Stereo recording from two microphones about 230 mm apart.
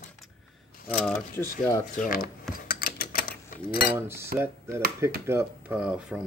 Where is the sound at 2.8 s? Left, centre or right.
Left.